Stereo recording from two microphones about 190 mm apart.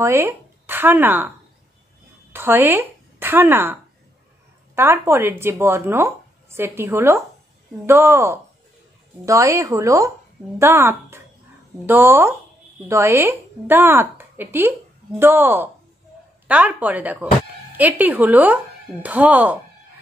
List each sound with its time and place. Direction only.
0.0 s speech: 15° right (ahead or behind)
2.3 s a woman's voice: 10° right (ahead or behind)
4.7 s speech: 10° right (ahead or behind)